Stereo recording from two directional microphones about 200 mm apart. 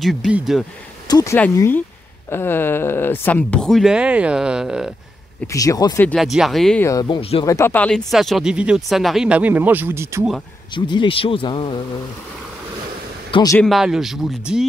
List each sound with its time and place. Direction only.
0.0 s speech: centre (ahead or behind)
1.0 s speech: 15° left (ahead or behind); by 4.9 s 5° right (ahead or behind)
5.5 s speech: 15° left (ahead or behind)
6.0 s speech: centre (ahead or behind)
6.9 s speech: 20° left (ahead or behind)
7.4 s speech: 15° left (ahead or behind); by 10.2 s 10° right (ahead or behind)
10.7 s speech: 25° left (ahead or behind)
13.3 s speech: 20° left (ahead or behind)
13.6 s speech: centre (ahead or behind)